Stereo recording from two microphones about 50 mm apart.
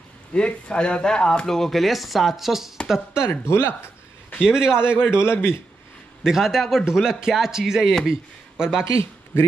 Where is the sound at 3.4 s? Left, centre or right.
Left.